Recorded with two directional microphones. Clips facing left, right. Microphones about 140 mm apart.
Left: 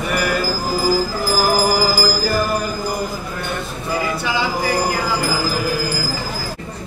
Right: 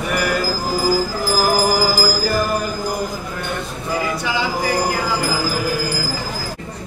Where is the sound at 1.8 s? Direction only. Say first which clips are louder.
Even; 10° left (ahead or behind).